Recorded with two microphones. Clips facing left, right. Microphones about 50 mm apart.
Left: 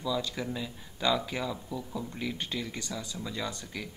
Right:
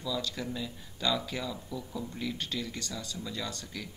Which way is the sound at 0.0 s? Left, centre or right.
Centre.